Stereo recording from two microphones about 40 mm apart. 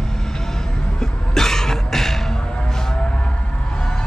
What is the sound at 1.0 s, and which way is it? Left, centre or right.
Music, centre.